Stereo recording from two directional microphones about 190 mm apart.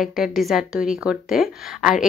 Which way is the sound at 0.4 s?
Centre (ahead or behind).